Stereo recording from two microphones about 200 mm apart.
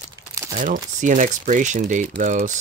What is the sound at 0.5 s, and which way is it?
Speech, 40° right (ahead or behind).